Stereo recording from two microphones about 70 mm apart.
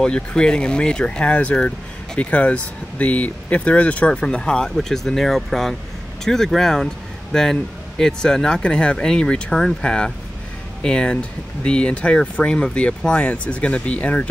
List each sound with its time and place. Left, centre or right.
0.0 s speech: centre